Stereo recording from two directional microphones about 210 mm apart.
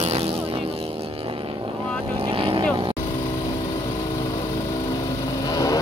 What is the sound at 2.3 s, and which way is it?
Vehicle, 25° right (ahead or behind).